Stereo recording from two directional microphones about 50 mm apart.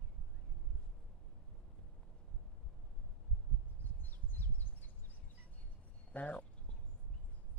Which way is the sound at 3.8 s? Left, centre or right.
Left.